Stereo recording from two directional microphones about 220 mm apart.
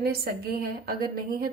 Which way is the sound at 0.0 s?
45° right (ahead or behind).